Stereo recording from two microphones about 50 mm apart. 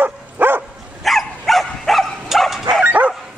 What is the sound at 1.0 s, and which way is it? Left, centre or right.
Dog, centre.